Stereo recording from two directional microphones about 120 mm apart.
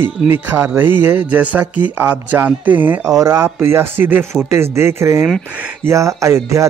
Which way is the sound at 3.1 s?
25° right (ahead or behind).